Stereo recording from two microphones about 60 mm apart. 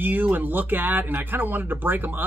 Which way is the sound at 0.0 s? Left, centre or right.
Right.